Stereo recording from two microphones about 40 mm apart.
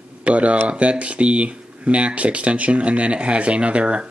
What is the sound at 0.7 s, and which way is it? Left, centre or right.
Speech, right.